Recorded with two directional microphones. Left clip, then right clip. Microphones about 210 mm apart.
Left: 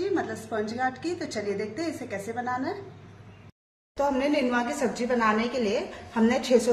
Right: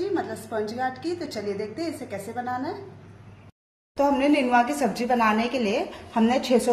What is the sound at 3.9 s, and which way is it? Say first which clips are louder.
A woman's voice: right 4 dB; 20° right (ahead or behind).